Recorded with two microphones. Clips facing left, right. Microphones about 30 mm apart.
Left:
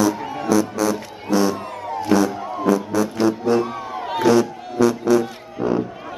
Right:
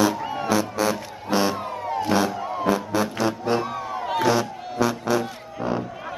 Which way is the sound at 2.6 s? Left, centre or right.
Right.